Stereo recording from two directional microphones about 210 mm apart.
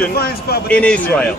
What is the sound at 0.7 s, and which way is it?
Speech, 5° left (ahead or behind).